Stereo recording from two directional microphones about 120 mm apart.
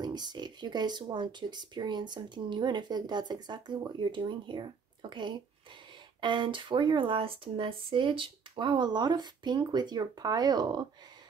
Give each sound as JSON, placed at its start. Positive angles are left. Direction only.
{"t": 0.0, "sound": "speech", "side_deg": -35}